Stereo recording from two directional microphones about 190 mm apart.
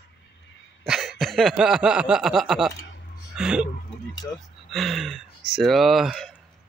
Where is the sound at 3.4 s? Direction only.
5° right (ahead or behind).